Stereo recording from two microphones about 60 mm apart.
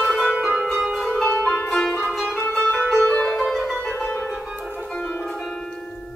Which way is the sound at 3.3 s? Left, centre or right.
Centre.